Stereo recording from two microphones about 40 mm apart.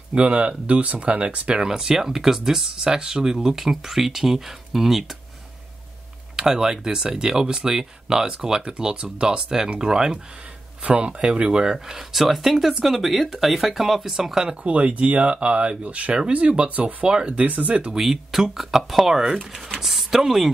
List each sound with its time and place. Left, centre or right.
0.1 s speech: right
1.7 s speech: centre
6.3 s speech: centre
10.8 s speech: right
12.0 s speech: centre
14.6 s speech: right
17.3 s speech: right
17.9 s speech: centre